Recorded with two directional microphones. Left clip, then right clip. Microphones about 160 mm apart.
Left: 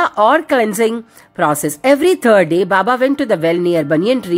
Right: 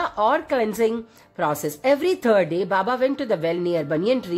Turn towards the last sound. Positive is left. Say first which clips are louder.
# left 7 dB
turn(degrees=25)  # may be behind; listen again after turning